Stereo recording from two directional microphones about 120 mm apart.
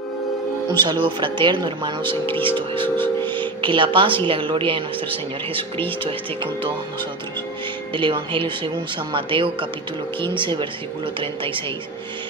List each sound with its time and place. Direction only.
1.0 s speech: 40° right (ahead or behind)
2.2 s speech: 15° left (ahead or behind)
2.5 s speech: 45° right (ahead or behind)
3.0 s speech: 15° left (ahead or behind)
3.6 s speech: 45° right (ahead or behind)
7.9 s speech: 45° right (ahead or behind)